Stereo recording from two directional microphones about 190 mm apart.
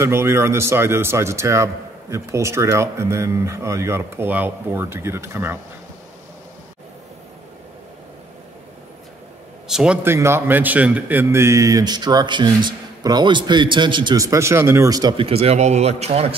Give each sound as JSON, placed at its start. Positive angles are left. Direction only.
{"t": 0.0, "sound": "a man's voice", "side_deg": -15}
{"t": 9.7, "sound": "a man's voice", "side_deg": -5}